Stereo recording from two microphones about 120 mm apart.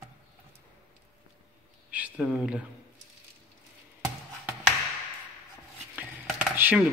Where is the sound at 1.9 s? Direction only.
10° right (ahead or behind).